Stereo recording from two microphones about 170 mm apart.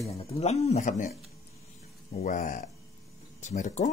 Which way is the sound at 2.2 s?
50° left (ahead or behind).